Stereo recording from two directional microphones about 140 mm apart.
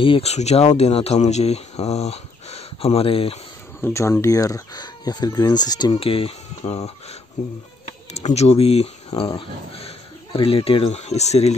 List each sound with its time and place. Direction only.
0.0 s speech: 45° left (ahead or behind)
3.8 s speech: 20° left (ahead or behind); by 6.8 s 40° left (ahead or behind)
7.4 s speech: 55° left (ahead or behind)